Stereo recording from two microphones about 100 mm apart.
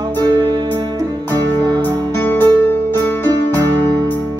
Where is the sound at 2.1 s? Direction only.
20° left (ahead or behind).